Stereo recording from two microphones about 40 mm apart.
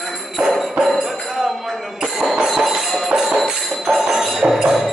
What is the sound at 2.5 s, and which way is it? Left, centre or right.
Music, centre.